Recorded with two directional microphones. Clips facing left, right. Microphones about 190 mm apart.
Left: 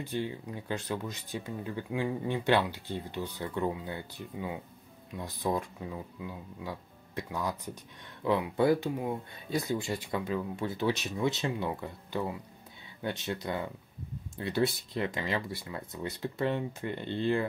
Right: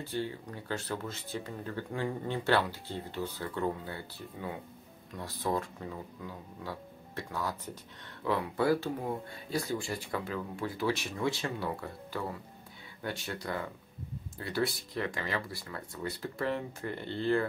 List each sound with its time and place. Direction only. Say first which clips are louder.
0.0 s speech: left 1 dB; 15° left (ahead or behind)